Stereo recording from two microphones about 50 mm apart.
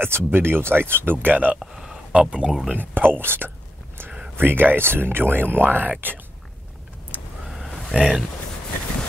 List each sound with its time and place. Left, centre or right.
0.0 s speech: right
1.2 s speech: right
1.6 s a sound: centre
2.1 s speech: right
2.7 s speech: right
7.4 s a sound: centre
7.9 s speech: centre